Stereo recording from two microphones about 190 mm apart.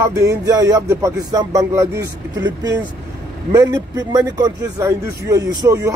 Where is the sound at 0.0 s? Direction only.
15° right (ahead or behind).